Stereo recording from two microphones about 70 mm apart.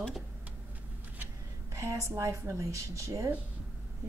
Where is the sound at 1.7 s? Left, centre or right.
Right.